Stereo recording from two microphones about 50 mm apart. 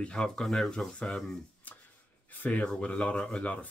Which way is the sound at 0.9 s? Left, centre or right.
Left.